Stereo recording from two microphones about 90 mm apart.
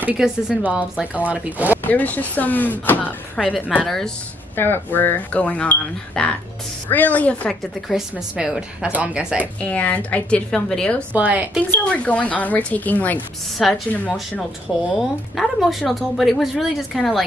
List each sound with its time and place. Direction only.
0.2 s a woman's voice: 5° right (ahead or behind)
1.9 s speech: 20° left (ahead or behind)
3.3 s a woman's voice: 10° right (ahead or behind)
3.8 s speech: 5° left (ahead or behind)
4.6 s a woman's voice: 25° left (ahead or behind)
7.9 s a woman's voice: 5° right (ahead or behind)
9.6 s a woman's voice: 15° left (ahead or behind)
11.1 s a woman's voice: 20° right (ahead or behind)
11.8 s a woman's voice: 15° left (ahead or behind)
13.6 s speech: centre (ahead or behind)
14.9 s speech: centre (ahead or behind)